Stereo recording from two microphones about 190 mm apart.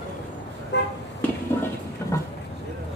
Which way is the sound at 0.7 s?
65° left (ahead or behind).